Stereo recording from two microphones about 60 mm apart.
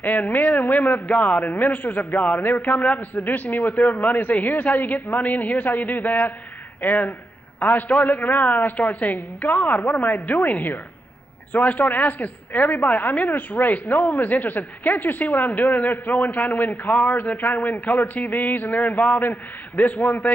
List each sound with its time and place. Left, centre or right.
0.0 s a woman's voice: left